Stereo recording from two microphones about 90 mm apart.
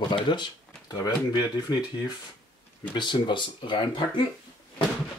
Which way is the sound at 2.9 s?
60° left (ahead or behind).